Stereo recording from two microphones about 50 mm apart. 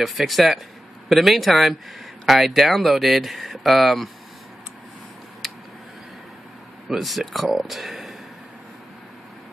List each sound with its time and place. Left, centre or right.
0.0 s speech: centre
5.4 s a sound: centre
6.9 s speech: centre